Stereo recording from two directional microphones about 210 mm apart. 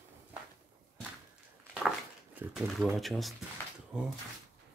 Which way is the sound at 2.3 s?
Centre (ahead or behind).